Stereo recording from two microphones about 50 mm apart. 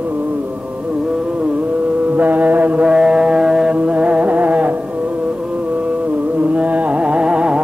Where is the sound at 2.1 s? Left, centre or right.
Right.